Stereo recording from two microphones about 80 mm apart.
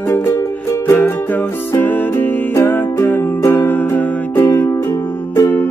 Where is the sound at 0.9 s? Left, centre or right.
Left.